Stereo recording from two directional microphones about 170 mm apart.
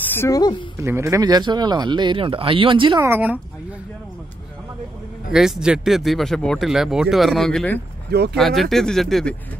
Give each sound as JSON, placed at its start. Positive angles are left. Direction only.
{"t": 0.1, "sound": "a woman's voice", "side_deg": 15}
{"t": 0.7, "sound": "speech", "side_deg": -15}
{"t": 3.0, "sound": "speech", "side_deg": -10}
{"t": 5.3, "sound": "speech", "side_deg": -5}
{"t": 8.1, "sound": "speech", "side_deg": -70}
{"t": 8.4, "sound": "speech", "side_deg": 0}